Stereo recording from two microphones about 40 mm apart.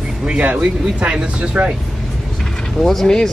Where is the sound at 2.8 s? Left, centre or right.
Centre.